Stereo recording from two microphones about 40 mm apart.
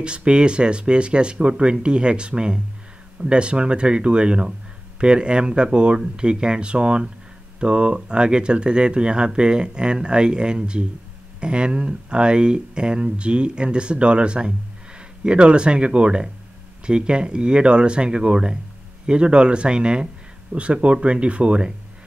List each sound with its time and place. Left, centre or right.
0.0 s speech: right